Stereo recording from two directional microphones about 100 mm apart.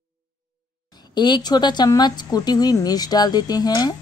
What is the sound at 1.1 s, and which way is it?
Speech, 50° left (ahead or behind).